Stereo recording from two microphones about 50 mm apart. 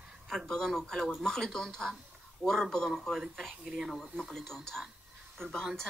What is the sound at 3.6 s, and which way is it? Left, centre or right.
Speech, centre.